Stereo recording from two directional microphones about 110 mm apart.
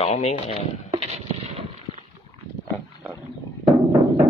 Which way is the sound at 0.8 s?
65° right (ahead or behind).